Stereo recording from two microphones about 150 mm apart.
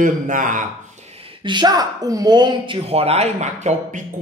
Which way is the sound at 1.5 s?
30° right (ahead or behind).